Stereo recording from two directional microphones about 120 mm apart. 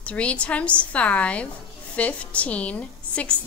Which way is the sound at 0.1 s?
10° left (ahead or behind).